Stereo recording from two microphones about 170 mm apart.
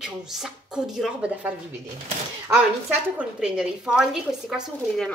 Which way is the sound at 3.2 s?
5° right (ahead or behind).